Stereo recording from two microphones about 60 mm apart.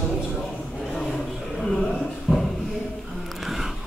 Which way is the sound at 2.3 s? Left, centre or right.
Centre.